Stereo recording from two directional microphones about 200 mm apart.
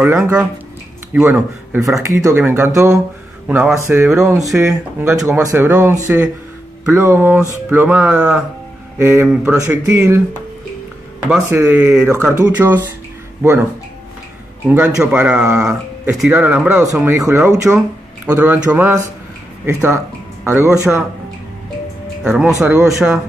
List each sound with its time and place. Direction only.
0.0 s speech: 5° right (ahead or behind)
4.0 s speech: centre (ahead or behind)
5.0 s speech: 15° right (ahead or behind)
11.2 s speech: 5° right (ahead or behind)
14.7 s speech: 5° right (ahead or behind)
22.2 s speech: 5° right (ahead or behind)